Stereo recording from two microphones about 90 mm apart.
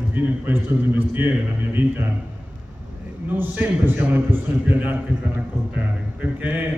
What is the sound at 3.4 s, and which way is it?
A man's voice, 20° right (ahead or behind).